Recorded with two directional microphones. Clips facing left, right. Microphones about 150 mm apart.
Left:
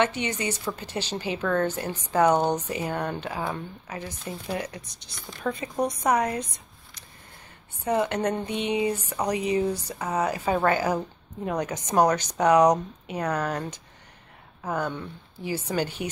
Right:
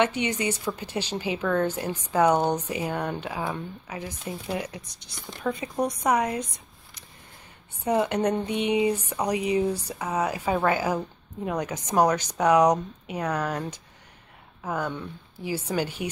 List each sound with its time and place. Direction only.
0.0 s speech: 15° right (ahead or behind)
7.8 s speech: 15° right (ahead or behind)